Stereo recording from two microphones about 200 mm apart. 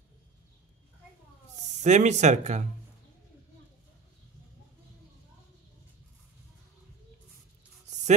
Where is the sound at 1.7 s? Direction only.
35° right (ahead or behind).